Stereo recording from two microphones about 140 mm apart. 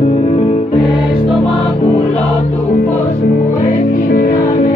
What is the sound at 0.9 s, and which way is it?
Music, 40° left (ahead or behind).